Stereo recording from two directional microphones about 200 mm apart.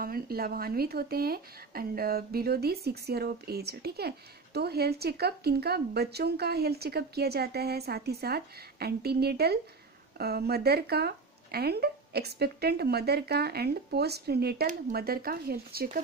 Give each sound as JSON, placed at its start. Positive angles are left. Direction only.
{"t": 0.0, "sound": "speech", "side_deg": -50}